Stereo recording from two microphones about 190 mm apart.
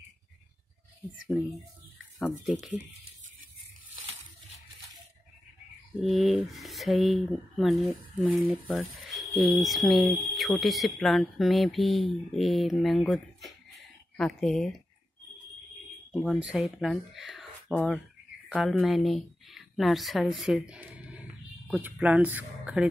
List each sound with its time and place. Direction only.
1.1 s speech: centre (ahead or behind)
5.9 s speech: centre (ahead or behind)
16.1 s speech: centre (ahead or behind)